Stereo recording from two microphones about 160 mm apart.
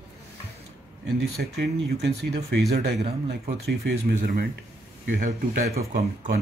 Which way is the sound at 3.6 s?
65° right (ahead or behind).